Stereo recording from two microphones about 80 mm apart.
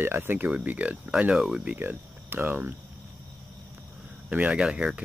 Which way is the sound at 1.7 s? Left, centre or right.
Right.